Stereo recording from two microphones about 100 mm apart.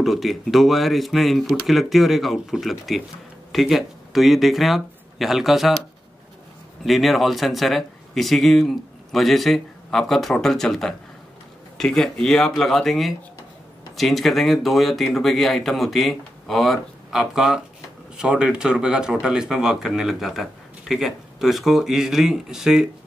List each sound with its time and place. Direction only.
0.0 s speech: centre (ahead or behind)
6.8 s speech: centre (ahead or behind)